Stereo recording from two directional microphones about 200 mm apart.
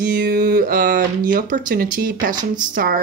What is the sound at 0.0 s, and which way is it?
Speech, 45° right (ahead or behind).